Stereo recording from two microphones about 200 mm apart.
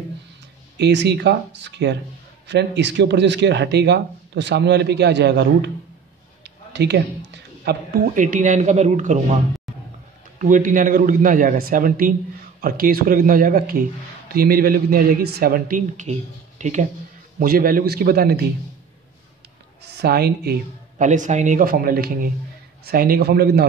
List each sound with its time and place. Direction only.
0.7 s speech: 60° right (ahead or behind)
6.4 s a sound: 60° right (ahead or behind)
8.1 s speech: 40° right (ahead or behind)
10.4 s a man's voice: 40° right (ahead or behind)
20.0 s a man's voice: 50° right (ahead or behind)
21.0 s a man's voice: 40° right (ahead or behind)